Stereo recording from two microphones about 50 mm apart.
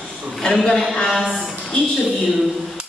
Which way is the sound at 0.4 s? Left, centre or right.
Centre.